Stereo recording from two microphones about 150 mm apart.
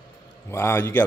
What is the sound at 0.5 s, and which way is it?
Speech, 15° left (ahead or behind).